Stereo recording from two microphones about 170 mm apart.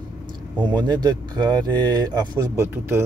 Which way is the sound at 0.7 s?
25° right (ahead or behind).